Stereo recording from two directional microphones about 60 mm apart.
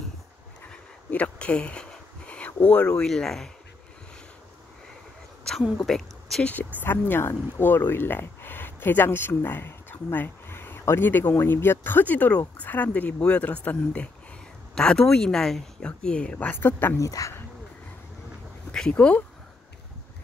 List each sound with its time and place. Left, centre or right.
0.7 s a sound: left
3.1 s speech: centre
5.8 s a woman's voice: centre
6.4 s speech: left
14.8 s speech: centre
16.5 s speech: left
17.0 s speech: left
18.7 s speech: centre